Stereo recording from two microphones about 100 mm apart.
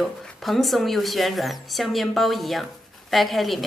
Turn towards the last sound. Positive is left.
turn(degrees=0)  # may be behind; listen again after turning